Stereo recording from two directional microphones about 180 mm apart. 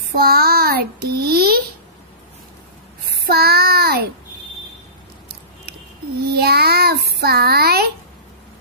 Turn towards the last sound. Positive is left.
turn(degrees=-60)  # may be behind; listen again after turning